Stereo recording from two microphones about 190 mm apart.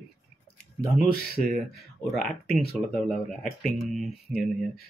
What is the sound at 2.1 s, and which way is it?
Speech, centre (ahead or behind).